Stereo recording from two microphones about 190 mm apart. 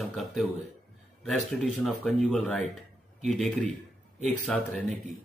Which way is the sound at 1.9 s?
Centre (ahead or behind).